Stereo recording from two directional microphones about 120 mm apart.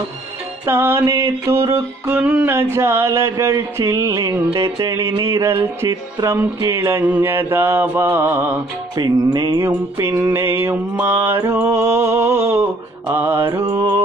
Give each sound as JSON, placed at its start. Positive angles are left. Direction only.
{"t": 0.7, "sound": "music", "side_deg": -20}
{"t": 7.1, "sound": "a sound", "side_deg": -20}
{"t": 7.5, "sound": "music", "side_deg": -20}
{"t": 8.9, "sound": "music", "side_deg": -35}
{"t": 10.3, "sound": "music", "side_deg": -20}